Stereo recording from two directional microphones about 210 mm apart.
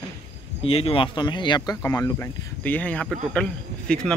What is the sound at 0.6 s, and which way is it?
Speech, 25° left (ahead or behind).